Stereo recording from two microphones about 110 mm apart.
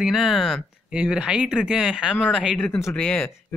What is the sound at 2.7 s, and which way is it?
Speech, 25° left (ahead or behind).